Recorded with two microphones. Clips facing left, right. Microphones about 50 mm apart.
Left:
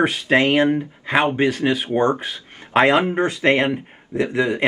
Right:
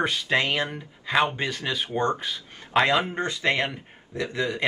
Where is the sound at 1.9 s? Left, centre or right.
Left.